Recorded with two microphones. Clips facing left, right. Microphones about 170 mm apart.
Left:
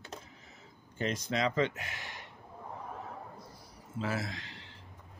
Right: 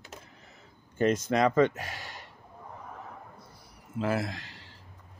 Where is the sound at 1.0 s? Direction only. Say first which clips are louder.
Right 8 dB; 50° right (ahead or behind).